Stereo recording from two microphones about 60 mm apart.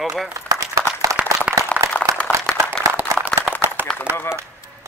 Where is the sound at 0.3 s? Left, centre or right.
Right.